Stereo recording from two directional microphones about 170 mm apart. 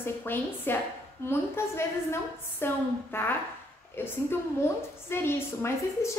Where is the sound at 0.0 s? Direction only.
10° left (ahead or behind).